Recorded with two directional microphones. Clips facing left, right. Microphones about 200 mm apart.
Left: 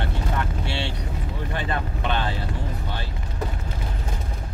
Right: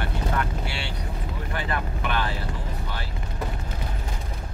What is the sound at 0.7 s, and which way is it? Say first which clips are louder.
Vehicle: left 4 dB; 25° left (ahead or behind).